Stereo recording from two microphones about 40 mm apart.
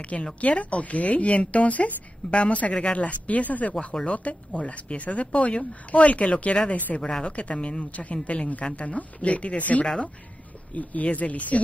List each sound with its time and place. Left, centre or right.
0.1 s a woman's voice: left
7.0 s a woman's voice: centre
7.2 s a woman's voice: left